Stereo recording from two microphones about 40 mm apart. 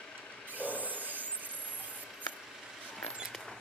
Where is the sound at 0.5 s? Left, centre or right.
Right.